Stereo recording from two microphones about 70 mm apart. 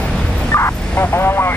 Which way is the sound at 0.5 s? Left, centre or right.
Left.